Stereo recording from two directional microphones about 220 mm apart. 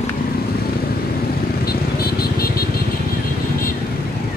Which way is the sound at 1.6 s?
45° left (ahead or behind).